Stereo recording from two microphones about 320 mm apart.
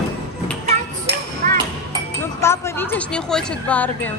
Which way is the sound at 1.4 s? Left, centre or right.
Right.